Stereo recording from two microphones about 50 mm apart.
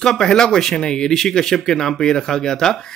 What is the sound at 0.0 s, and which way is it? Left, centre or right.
Speech, centre.